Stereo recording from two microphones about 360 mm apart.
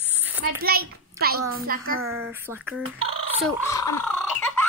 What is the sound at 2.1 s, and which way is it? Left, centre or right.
Speech, centre.